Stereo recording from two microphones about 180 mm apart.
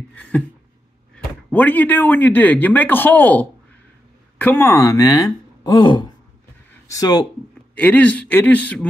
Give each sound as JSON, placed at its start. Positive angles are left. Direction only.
{"t": 0.1, "sound": "speech", "side_deg": 5}
{"t": 6.7, "sound": "a sound", "side_deg": 20}
{"t": 7.7, "sound": "speech", "side_deg": 10}